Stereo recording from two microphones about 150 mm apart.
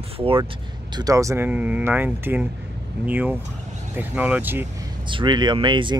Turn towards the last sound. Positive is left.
turn(degrees=-30)  # may be behind; listen again after turning